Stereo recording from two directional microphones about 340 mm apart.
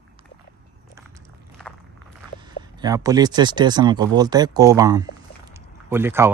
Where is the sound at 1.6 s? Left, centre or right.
Centre.